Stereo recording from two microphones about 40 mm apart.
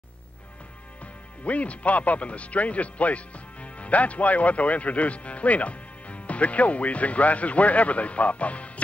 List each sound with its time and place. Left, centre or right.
1.4 s speech: left